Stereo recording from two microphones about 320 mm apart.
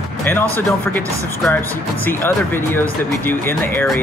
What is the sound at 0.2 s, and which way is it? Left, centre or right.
Speech, centre.